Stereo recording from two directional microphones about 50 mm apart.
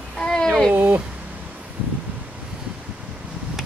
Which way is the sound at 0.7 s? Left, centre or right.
Right.